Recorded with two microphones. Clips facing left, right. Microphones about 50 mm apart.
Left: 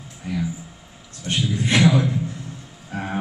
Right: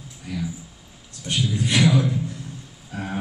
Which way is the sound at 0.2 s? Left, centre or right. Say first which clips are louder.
Left 3 dB; left.